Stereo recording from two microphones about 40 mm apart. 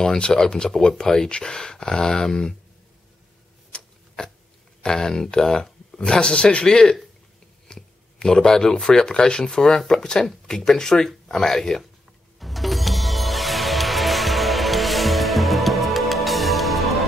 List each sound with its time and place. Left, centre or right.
0.0 s speech: centre
3.7 s a sound: left
4.8 s speech: centre
12.4 s music: centre